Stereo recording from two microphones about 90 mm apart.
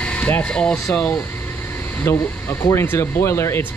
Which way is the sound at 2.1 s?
25° left (ahead or behind).